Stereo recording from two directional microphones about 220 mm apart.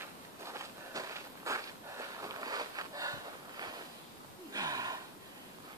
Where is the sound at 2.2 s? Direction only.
15° right (ahead or behind).